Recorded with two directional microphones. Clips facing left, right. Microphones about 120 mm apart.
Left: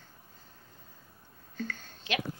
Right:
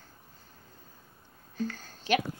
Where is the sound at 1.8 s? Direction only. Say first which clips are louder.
Right 5 dB; 45° right (ahead or behind).